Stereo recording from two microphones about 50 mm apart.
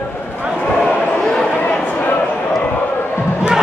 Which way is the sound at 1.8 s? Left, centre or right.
Left.